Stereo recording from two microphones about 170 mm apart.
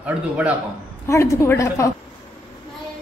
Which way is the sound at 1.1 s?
15° left (ahead or behind).